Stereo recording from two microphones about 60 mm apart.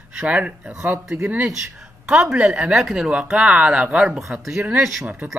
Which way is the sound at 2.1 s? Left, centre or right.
Centre.